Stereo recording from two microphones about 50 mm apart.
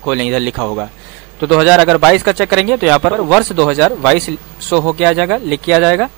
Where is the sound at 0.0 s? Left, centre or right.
Centre.